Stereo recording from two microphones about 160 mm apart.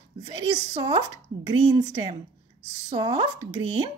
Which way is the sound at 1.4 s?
30° right (ahead or behind).